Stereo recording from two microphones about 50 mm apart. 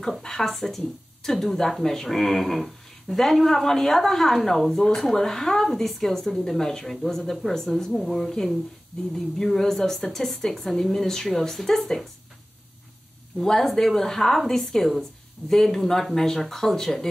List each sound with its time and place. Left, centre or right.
0.2 s speech: centre
13.4 s speech: centre